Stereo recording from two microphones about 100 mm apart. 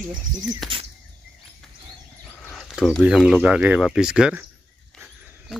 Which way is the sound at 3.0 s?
5° right (ahead or behind).